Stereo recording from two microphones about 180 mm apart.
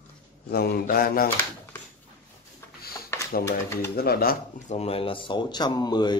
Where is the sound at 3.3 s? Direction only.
55° left (ahead or behind).